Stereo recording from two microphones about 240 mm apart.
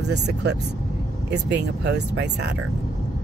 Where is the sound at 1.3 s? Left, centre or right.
Right.